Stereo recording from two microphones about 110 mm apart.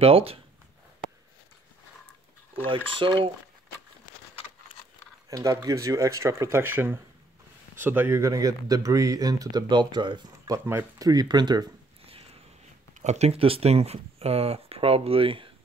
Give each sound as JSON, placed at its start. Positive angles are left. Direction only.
{"t": 0.0, "sound": "speech", "side_deg": -60}
{"t": 2.7, "sound": "speech", "side_deg": -50}
{"t": 5.3, "sound": "speech", "side_deg": -30}
{"t": 8.3, "sound": "speech", "side_deg": -30}
{"t": 10.5, "sound": "speech", "side_deg": -25}
{"t": 11.1, "sound": "speech", "side_deg": -40}
{"t": 12.1, "sound": "a sound", "side_deg": -60}
{"t": 13.0, "sound": "speech", "side_deg": -85}